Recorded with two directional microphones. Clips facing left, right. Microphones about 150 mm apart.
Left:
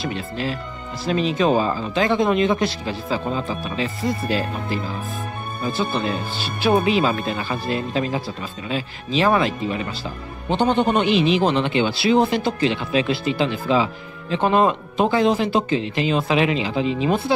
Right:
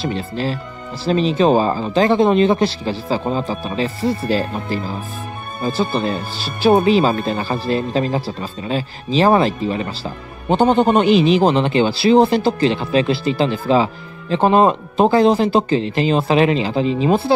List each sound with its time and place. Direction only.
0.0 s speech: 35° right (ahead or behind)